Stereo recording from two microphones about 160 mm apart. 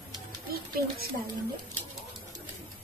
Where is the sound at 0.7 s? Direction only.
70° right (ahead or behind).